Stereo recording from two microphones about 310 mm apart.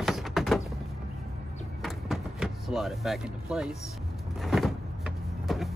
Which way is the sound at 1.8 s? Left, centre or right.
Centre.